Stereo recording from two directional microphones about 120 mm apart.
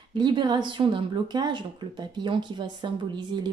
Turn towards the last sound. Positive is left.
turn(degrees=-40)  # may be behind; listen again after turning